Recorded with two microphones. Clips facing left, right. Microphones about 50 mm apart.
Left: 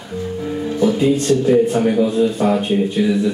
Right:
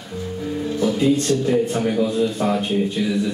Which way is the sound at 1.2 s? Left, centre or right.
Centre.